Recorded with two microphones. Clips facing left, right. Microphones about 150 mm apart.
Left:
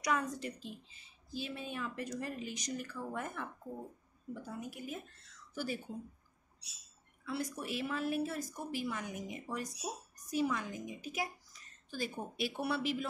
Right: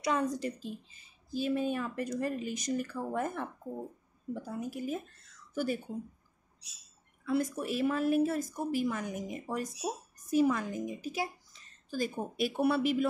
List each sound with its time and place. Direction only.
0.0 s a woman's voice: 30° right (ahead or behind)
5.5 s speech: 50° right (ahead or behind)
7.2 s a woman's voice: 45° right (ahead or behind)
11.1 s a sound: 30° right (ahead or behind)
12.0 s a woman's voice: 50° right (ahead or behind)